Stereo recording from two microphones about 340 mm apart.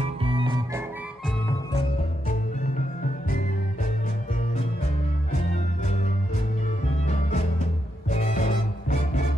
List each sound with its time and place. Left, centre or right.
0.0 s music: centre
7.1 s music: left